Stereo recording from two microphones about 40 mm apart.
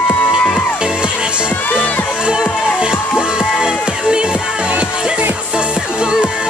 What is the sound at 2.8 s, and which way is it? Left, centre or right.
Music, centre.